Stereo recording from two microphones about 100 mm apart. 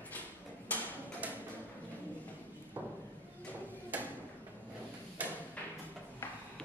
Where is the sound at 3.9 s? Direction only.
15° right (ahead or behind).